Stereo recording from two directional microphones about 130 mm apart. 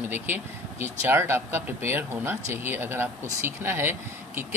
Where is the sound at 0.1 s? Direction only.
15° right (ahead or behind).